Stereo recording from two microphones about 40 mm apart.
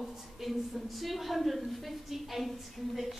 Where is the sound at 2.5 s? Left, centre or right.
Centre.